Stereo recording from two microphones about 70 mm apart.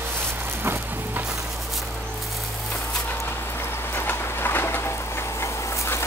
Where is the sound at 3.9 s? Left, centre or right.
Left.